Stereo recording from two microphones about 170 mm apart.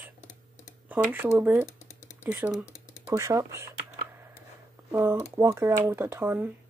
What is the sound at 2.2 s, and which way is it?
Typing, 10° right (ahead or behind).